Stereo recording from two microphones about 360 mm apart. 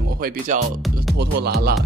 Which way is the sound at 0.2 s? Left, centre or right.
Right.